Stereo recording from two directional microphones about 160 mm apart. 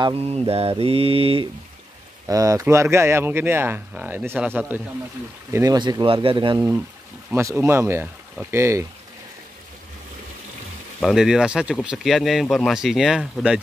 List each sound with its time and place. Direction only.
0.0 s mantra: 40° right (ahead or behind)
2.2 s speech: 20° right (ahead or behind)
5.5 s speech: 20° right (ahead or behind)
7.3 s speech: 15° right (ahead or behind)
11.0 s speech: centre (ahead or behind)